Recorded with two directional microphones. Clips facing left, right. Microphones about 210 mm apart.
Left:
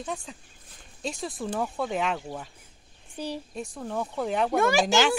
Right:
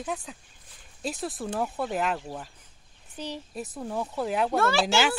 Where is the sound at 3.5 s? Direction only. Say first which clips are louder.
Even; 5° right (ahead or behind).